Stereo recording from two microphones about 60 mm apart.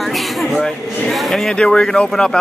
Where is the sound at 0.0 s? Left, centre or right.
Centre.